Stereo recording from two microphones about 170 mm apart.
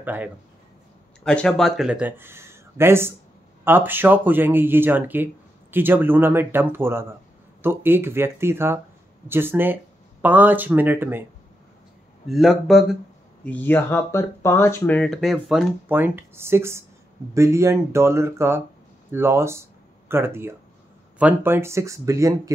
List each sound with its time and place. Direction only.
0.0 s speech: 10° right (ahead or behind)
1.2 s speech: 5° left (ahead or behind); by 11.2 s 10° right (ahead or behind)
12.3 s speech: centre (ahead or behind)
13.4 s speech: 10° left (ahead or behind); by 22.5 s 20° right (ahead or behind)